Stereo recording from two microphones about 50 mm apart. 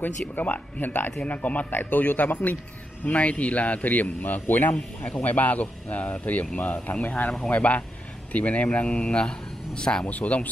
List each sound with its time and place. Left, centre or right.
0.4 s a man's voice: left
1.2 s a man's voice: left